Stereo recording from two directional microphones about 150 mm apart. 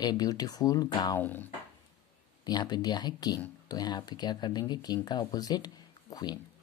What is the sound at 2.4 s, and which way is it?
Speech, 30° left (ahead or behind).